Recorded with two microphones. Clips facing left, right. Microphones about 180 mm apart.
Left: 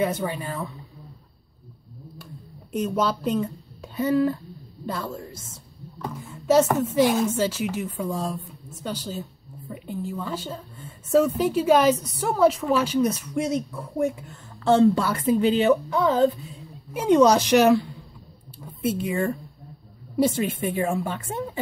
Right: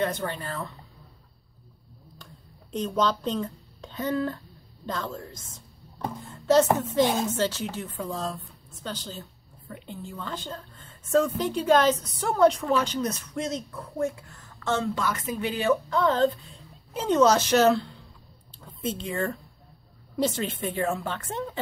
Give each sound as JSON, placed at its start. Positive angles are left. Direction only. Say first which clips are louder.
{"t": 0.0, "sound": "a woman's voice", "louder": "left 3 dB", "side_deg": 10}
{"t": 2.7, "sound": "a woman's voice", "louder": "left 2 dB", "side_deg": 10}
{"t": 14.6, "sound": "speech", "louder": "left 9 dB", "side_deg": 35}
{"t": 15.9, "sound": "a woman's voice", "louder": "left 3 dB", "side_deg": 10}